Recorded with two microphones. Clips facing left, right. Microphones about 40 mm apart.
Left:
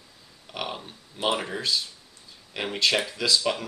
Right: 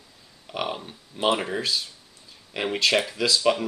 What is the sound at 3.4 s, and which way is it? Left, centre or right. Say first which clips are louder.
Speech: right 5 dB; centre.